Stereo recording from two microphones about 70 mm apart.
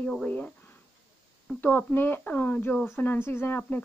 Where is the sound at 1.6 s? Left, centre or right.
Left.